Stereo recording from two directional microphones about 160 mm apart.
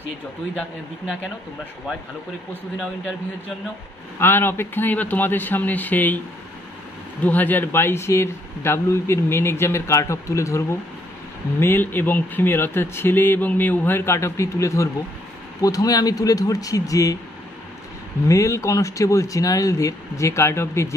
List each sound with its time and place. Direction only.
4.2 s a man's voice: 15° left (ahead or behind)
7.2 s a man's voice: 10° left (ahead or behind)
18.3 s speech: 20° left (ahead or behind)